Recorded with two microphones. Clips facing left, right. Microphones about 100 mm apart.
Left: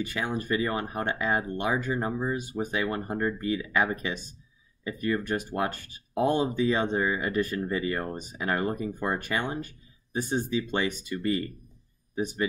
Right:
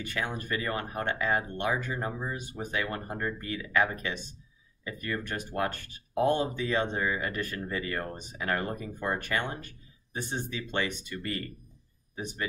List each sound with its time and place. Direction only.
0.0 s speech: 15° left (ahead or behind)